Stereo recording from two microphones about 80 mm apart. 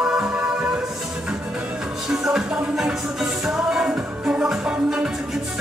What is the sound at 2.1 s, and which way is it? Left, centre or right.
Music, centre.